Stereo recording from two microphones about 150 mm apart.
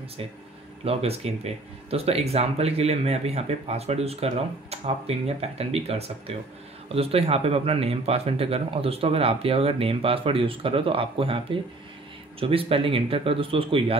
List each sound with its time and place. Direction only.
0.8 s speech: 45° right (ahead or behind)